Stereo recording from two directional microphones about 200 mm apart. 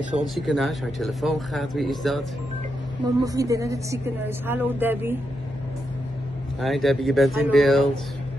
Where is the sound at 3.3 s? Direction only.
15° right (ahead or behind).